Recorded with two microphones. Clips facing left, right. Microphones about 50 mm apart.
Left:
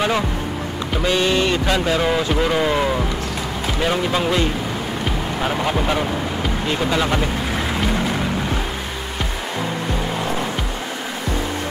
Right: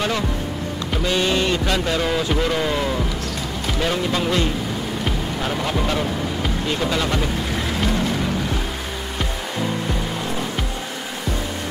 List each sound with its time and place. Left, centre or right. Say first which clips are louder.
1.1 s speech: left 1 dB; centre
6.7 s boat: left 3 dB; centre